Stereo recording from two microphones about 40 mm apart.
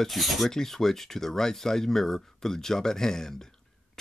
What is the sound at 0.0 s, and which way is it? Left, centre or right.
Speech, centre.